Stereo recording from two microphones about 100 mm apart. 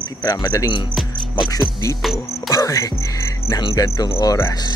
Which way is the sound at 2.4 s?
35° left (ahead or behind).